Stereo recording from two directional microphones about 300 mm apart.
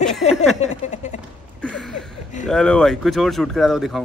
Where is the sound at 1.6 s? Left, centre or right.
Centre.